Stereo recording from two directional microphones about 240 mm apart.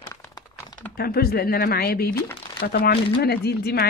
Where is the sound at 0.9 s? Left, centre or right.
Left.